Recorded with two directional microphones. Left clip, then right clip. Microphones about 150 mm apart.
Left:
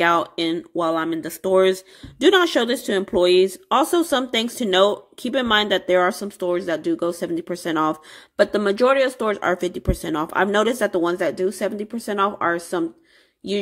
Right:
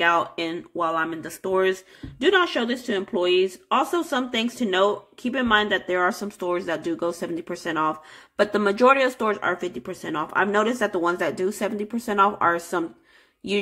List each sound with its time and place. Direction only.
0.0 s speech: 35° left (ahead or behind)
2.1 s speech: 50° left (ahead or behind)
6.2 s speech: 25° left (ahead or behind)
7.7 s speech: 40° left (ahead or behind)
8.4 s speech: 20° left (ahead or behind)
9.3 s speech: 40° left (ahead or behind); by 12.8 s 20° left (ahead or behind)